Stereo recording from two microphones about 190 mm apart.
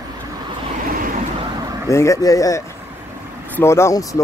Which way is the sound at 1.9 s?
15° left (ahead or behind).